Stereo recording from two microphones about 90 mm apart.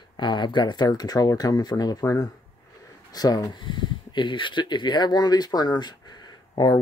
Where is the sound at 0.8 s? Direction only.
45° left (ahead or behind).